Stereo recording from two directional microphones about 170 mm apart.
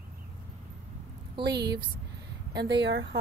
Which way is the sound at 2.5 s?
90° right.